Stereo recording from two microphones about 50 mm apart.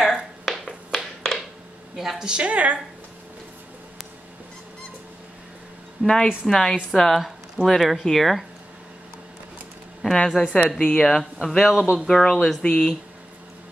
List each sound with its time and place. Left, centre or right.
0.0 s finger snapping: centre
2.0 s a woman's voice: centre
2.2 s a woman's voice: right
6.4 s speech: centre
10.0 s speech: centre
11.7 s speech: centre
12.1 s speech: centre